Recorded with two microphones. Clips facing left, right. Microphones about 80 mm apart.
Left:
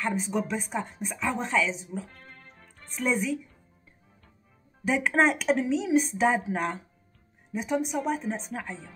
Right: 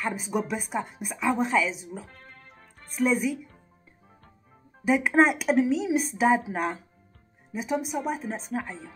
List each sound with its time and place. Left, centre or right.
0.0 s a woman's voice: centre
4.8 s speech: centre